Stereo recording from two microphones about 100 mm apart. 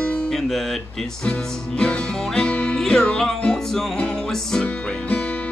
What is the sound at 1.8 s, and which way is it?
Music, 10° left (ahead or behind).